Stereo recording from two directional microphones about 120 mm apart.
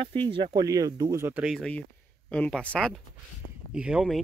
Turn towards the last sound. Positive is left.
turn(degrees=-5)  # may be behind; listen again after turning